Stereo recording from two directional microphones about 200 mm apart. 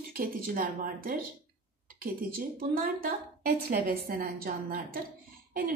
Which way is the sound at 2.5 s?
45° right (ahead or behind).